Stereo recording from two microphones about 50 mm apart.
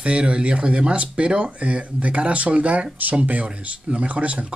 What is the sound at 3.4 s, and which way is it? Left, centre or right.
Speech, right.